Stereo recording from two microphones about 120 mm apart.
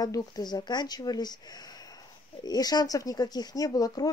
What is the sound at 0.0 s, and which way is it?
Speech, 30° left (ahead or behind).